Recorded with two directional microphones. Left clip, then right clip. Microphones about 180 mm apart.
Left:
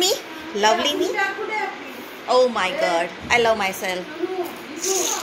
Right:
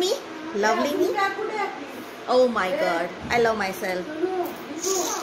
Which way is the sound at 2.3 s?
20° right (ahead or behind).